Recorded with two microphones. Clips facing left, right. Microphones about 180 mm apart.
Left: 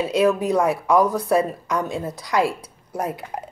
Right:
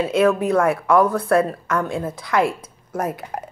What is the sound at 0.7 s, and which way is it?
Speech, 60° right (ahead or behind).